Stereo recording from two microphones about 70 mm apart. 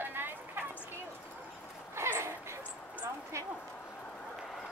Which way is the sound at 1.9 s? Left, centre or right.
Right.